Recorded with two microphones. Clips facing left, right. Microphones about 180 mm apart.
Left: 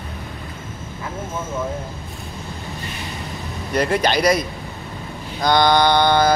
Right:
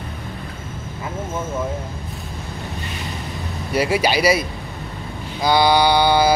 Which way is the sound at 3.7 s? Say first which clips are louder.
Even; 5° right (ahead or behind).